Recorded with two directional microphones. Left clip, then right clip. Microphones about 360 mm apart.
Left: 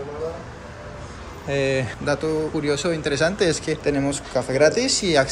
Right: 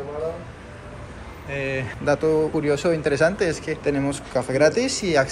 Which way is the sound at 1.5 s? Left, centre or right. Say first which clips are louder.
Left 5 dB; centre.